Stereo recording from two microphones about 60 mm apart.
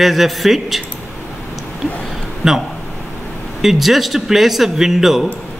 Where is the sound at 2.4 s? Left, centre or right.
Centre.